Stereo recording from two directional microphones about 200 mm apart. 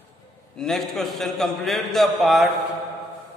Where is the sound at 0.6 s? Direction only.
Centre (ahead or behind).